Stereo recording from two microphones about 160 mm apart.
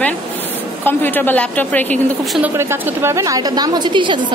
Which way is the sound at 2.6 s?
15° right (ahead or behind).